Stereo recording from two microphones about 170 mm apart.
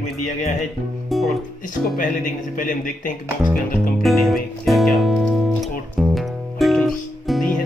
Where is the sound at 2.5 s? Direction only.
50° left (ahead or behind).